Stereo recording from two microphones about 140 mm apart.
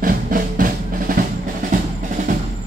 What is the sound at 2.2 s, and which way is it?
Percussion, 60° right (ahead or behind).